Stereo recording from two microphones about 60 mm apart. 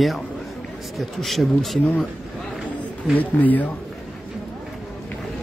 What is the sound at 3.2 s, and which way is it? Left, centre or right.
Speech, left.